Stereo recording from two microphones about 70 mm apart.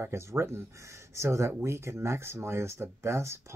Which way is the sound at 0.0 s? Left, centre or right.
Right.